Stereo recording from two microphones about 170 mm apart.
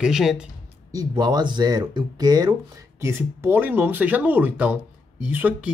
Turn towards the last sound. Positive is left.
turn(degrees=-10)  # may be behind; listen again after turning